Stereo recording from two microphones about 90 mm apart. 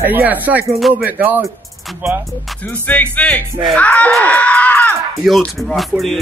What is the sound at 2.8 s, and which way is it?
Speech, 20° left (ahead or behind).